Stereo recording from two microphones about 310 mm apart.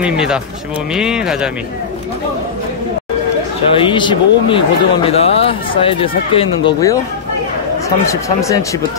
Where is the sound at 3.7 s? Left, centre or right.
Centre.